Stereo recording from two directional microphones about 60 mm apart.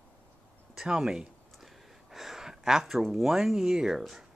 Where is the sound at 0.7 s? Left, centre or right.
Centre.